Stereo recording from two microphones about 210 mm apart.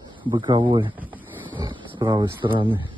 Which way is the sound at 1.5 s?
20° right (ahead or behind).